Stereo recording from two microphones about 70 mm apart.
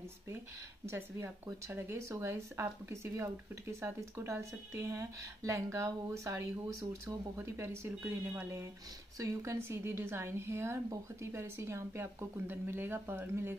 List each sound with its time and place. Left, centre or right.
0.8 s speech: right
7.4 s speech: right
9.2 s speech: right